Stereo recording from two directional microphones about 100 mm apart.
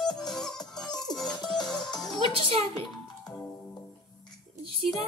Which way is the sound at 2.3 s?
65° right (ahead or behind).